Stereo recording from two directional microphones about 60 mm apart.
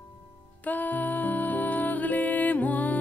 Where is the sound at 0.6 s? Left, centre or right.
Left.